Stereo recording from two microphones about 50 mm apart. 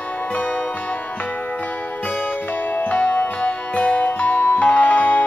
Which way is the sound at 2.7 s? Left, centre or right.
Left.